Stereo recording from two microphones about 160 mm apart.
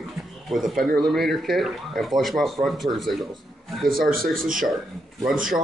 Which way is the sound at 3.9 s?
65° right (ahead or behind).